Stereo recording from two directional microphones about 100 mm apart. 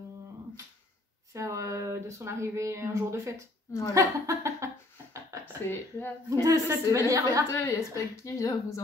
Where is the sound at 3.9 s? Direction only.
30° right (ahead or behind).